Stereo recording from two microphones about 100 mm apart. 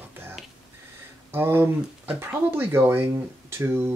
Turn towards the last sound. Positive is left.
turn(degrees=-25)  # may be behind; listen again after turning